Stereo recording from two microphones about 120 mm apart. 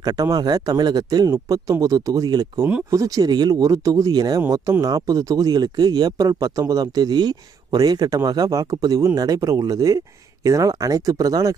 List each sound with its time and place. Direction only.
0.0 s speech: 30° right (ahead or behind)